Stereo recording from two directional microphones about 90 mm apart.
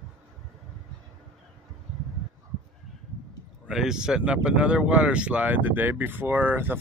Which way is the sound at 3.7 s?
5° right (ahead or behind).